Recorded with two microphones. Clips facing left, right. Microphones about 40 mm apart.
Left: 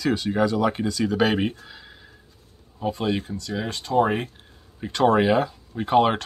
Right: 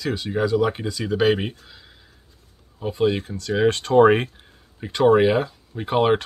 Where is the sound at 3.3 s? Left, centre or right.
Right.